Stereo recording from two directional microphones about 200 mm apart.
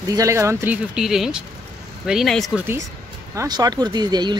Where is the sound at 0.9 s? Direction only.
Centre (ahead or behind).